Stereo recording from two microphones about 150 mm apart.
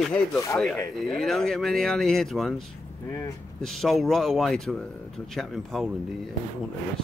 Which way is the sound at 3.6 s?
Centre (ahead or behind).